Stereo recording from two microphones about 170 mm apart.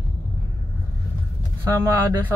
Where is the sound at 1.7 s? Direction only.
15° right (ahead or behind).